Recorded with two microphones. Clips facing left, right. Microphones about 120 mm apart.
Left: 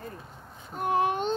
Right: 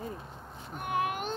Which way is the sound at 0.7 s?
30° left (ahead or behind).